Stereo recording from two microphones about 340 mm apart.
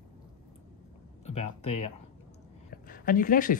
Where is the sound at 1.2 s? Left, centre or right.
Centre.